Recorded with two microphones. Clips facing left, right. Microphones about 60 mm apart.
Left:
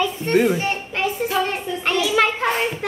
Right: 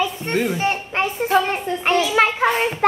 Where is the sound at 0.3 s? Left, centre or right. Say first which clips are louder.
Left 6 dB; centre.